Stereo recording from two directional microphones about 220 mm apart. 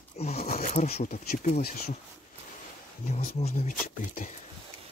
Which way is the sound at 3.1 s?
30° left (ahead or behind).